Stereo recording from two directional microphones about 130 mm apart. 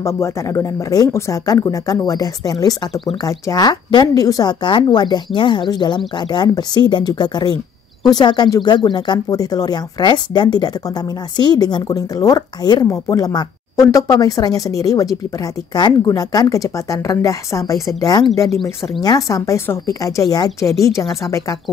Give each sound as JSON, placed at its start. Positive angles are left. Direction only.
{"t": 0.0, "sound": "speech", "side_deg": 20}